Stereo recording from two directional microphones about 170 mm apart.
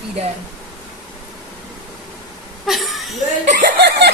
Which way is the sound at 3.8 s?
75° right (ahead or behind).